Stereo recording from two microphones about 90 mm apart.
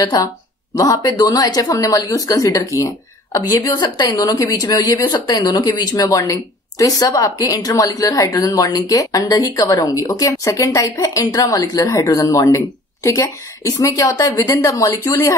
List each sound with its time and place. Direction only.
0.0 s speech: 45° left (ahead or behind)